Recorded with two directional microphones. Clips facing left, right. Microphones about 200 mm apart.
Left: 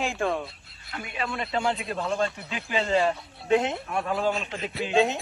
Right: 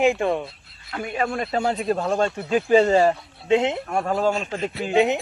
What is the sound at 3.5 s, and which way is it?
Speech, 25° right (ahead or behind).